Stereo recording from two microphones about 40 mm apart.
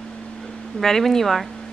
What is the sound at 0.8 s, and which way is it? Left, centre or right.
Speech, centre.